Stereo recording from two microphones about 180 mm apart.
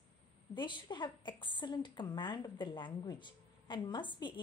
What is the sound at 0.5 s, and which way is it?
A woman's voice, 25° left (ahead or behind).